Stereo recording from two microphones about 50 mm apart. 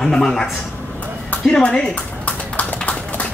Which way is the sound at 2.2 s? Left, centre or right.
Left.